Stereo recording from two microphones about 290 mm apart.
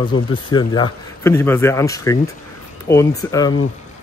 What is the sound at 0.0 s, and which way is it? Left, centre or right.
Speech, centre.